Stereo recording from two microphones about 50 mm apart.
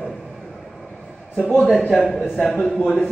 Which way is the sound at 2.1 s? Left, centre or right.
Centre.